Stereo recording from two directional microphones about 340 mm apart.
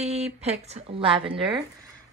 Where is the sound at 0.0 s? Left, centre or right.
Centre.